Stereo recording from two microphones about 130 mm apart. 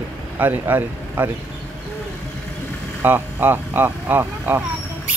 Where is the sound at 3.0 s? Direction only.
15° right (ahead or behind).